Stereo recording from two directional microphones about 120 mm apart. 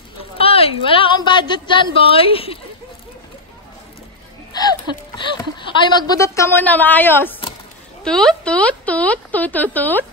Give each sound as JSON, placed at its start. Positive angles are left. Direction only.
{"t": 0.2, "sound": "a woman's voice", "side_deg": 50}
{"t": 5.1, "sound": "a woman's voice", "side_deg": 40}
{"t": 8.0, "sound": "speech", "side_deg": 5}